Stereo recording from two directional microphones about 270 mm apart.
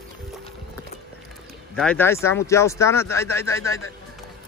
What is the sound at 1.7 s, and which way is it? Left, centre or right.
Speech, centre.